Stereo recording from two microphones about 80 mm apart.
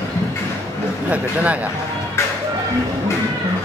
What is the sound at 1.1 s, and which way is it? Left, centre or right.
Speech, centre.